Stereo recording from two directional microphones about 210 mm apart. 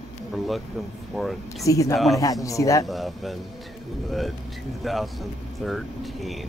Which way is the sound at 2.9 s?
Centre (ahead or behind).